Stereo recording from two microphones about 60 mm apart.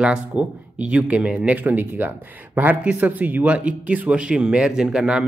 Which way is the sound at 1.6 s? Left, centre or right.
Right.